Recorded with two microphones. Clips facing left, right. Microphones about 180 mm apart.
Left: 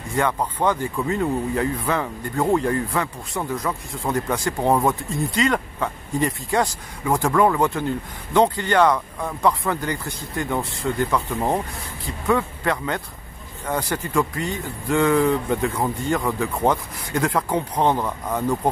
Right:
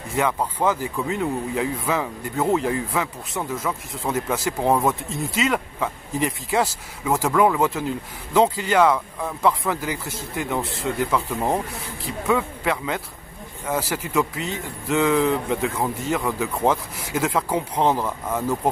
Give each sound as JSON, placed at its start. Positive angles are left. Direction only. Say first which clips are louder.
{"t": 0.1, "sound": "speech", "louder": "even", "side_deg": -5}